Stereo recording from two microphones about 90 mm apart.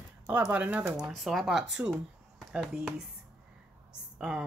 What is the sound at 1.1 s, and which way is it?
Speech, centre (ahead or behind).